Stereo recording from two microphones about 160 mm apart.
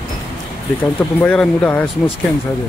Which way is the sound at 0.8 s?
10° left (ahead or behind).